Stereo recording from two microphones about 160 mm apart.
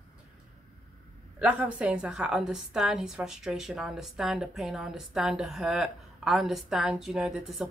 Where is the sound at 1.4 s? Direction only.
10° right (ahead or behind).